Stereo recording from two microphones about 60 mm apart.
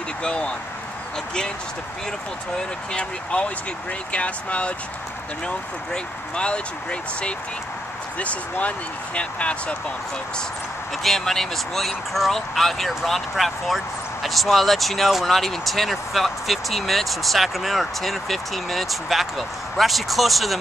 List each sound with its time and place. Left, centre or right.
0.2 s speech: centre
2.5 s speech: centre
6.3 s speech: centre
11.0 s speech: centre